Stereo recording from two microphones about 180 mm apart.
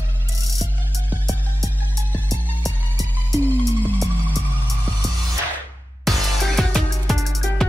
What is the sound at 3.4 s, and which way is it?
Music, 10° left (ahead or behind).